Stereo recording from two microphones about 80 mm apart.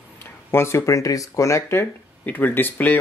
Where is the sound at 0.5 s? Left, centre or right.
Left.